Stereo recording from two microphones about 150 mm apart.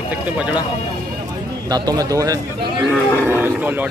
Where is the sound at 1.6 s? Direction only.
25° right (ahead or behind).